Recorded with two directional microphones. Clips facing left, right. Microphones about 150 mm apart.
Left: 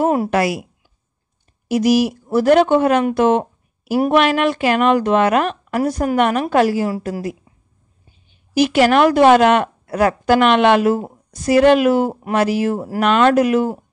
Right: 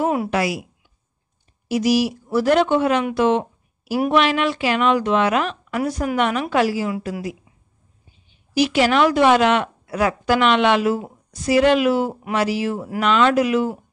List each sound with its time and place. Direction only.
0.0 s speech: 45° left (ahead or behind)
1.7 s speech: 50° left (ahead or behind)